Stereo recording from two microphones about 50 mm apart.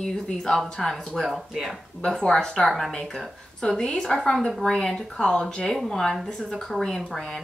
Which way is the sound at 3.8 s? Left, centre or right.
Centre.